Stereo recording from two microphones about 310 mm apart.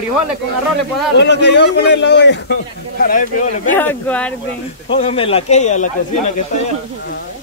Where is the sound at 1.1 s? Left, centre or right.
Left.